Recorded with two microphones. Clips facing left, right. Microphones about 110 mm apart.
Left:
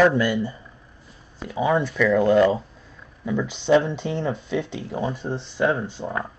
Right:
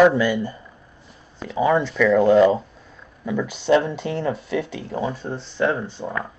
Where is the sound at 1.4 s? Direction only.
5° left (ahead or behind).